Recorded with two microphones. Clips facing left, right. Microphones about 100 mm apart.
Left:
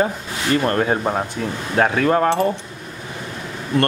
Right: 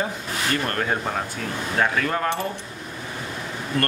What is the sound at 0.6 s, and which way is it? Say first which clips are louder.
Speech: left 6 dB; 25° left (ahead or behind).